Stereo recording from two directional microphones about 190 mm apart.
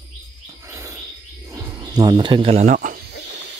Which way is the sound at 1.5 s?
20° right (ahead or behind).